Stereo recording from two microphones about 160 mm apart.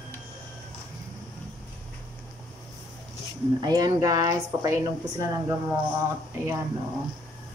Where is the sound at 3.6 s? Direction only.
25° right (ahead or behind).